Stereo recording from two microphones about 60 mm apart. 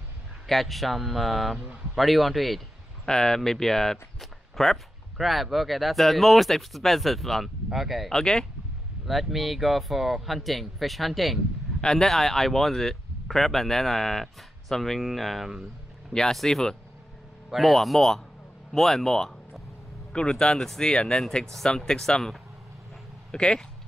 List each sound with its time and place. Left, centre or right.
0.5 s speech: centre
3.1 s speech: centre
8.1 s speech: centre
9.0 s speech: centre
16.1 s speech: centre